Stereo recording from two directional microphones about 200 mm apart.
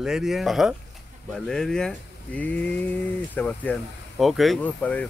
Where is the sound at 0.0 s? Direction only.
Centre (ahead or behind).